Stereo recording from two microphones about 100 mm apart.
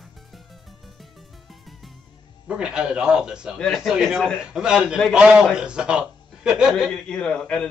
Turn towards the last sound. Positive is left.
turn(degrees=10)  # may be behind; listen again after turning